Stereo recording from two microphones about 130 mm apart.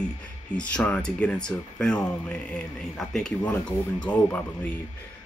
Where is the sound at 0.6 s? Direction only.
10° left (ahead or behind).